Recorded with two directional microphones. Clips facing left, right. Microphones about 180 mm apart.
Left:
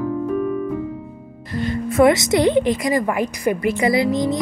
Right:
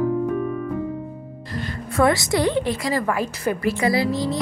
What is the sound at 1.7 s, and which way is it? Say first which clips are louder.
A woman's voice: left 5 dB; 20° left (ahead or behind).